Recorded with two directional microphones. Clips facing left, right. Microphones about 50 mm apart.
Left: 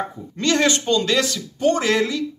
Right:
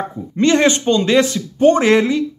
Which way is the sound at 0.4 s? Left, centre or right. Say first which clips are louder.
Right 5 dB; right.